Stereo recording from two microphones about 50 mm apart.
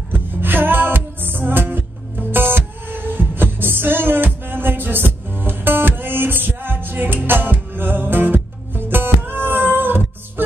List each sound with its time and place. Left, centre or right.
0.1 s music: right